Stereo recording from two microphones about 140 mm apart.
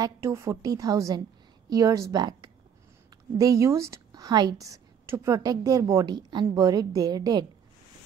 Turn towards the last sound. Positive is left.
turn(degrees=-25)  # may be behind; listen again after turning